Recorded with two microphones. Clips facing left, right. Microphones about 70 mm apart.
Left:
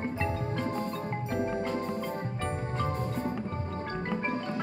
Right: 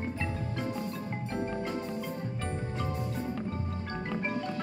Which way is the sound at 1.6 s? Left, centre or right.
Left.